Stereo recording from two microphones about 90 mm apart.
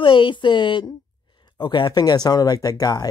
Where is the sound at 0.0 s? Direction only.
70° left (ahead or behind).